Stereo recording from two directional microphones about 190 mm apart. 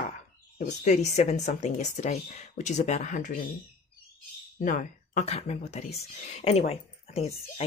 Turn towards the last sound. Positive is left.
turn(degrees=35)  # may be behind; listen again after turning